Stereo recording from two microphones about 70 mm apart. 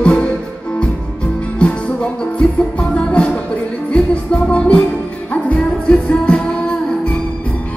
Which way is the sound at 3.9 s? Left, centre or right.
Centre.